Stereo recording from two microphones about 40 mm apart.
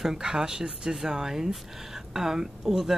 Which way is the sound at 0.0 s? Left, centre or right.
Centre.